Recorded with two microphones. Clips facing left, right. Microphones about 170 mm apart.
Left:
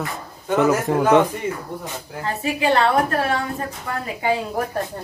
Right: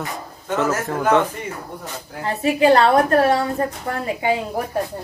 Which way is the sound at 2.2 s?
35° right (ahead or behind).